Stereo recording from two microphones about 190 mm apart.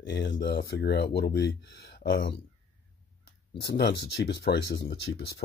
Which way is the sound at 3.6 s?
60° left (ahead or behind).